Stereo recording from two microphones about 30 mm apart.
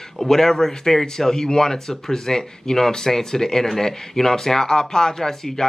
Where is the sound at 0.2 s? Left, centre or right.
Centre.